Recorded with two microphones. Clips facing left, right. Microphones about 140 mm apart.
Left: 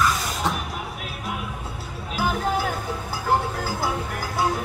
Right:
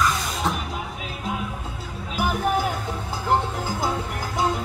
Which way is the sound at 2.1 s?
20° right (ahead or behind).